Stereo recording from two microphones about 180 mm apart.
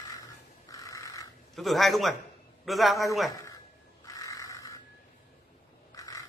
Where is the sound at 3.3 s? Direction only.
20° left (ahead or behind).